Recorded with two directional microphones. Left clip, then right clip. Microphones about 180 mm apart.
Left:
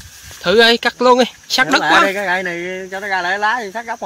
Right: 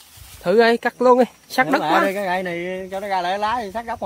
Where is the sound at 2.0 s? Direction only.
45° right (ahead or behind).